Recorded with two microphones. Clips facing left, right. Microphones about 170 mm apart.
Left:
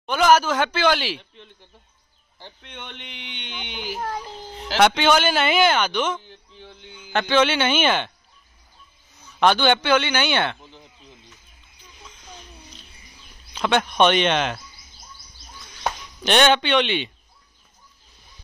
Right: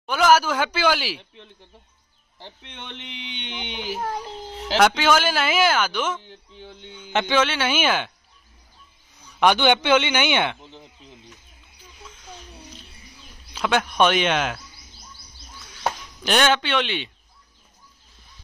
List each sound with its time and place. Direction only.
0.0 s speech: 5° right (ahead or behind)
2.3 s a child's voice: 30° right (ahead or behind)
4.7 s speech: centre (ahead or behind)
6.2 s a sound: 30° right (ahead or behind)
7.1 s speech: 20° right (ahead or behind)
7.3 s speech: 5° right (ahead or behind)
9.4 s speech: 15° right (ahead or behind)
13.5 s speech: 5° right (ahead or behind)
15.8 s speech: centre (ahead or behind)